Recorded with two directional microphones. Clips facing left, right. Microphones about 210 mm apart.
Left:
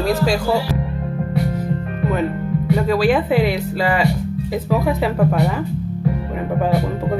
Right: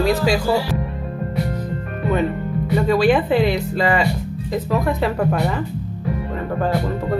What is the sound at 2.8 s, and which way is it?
Speech, centre (ahead or behind).